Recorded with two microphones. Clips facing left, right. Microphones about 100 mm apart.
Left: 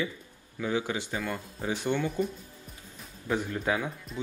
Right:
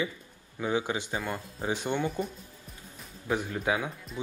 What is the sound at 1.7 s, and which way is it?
Speech, 20° right (ahead or behind).